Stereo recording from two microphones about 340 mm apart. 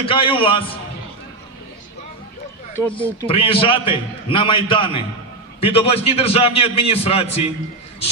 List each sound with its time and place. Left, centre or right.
0.0 s a man's voice: centre
2.8 s a man's voice: centre